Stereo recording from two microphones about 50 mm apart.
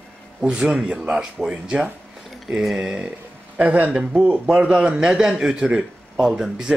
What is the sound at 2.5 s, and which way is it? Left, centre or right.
Speech, centre.